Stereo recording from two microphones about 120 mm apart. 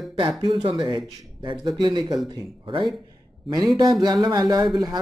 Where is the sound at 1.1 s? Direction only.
35° right (ahead or behind).